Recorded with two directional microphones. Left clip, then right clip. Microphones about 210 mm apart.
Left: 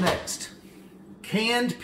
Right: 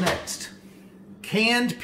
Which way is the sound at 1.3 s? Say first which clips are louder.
Right 3 dB; 40° right (ahead or behind).